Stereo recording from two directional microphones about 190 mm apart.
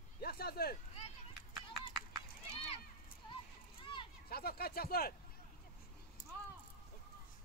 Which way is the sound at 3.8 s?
25° left (ahead or behind).